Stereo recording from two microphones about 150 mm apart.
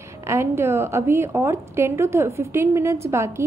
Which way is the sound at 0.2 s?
20° right (ahead or behind).